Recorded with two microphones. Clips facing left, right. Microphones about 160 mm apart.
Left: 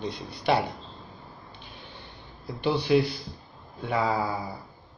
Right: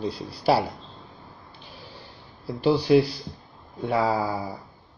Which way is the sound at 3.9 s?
30° right (ahead or behind).